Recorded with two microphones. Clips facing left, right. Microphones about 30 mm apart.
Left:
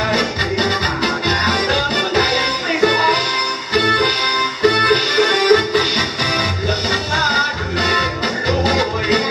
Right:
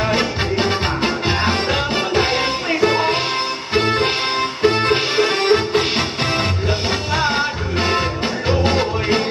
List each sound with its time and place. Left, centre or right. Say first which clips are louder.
0.1 s music: left 1 dB; centre